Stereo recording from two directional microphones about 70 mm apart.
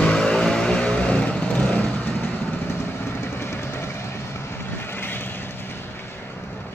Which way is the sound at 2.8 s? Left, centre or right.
Left.